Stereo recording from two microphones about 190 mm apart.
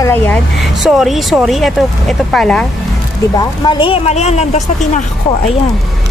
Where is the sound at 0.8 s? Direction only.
Centre (ahead or behind).